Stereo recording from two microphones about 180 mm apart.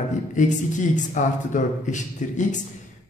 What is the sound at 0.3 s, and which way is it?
A man's voice, 45° left (ahead or behind).